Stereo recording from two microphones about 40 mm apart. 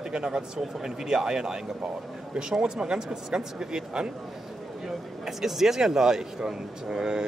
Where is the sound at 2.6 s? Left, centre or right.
Centre.